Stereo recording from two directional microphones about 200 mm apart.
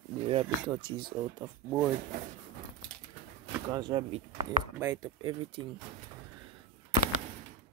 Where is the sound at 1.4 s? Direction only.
15° right (ahead or behind).